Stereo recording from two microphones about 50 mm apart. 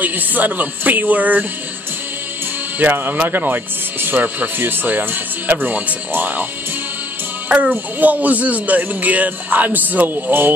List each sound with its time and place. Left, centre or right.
0.0 s speech: right
2.8 s speech: right
7.4 s a child's voice: right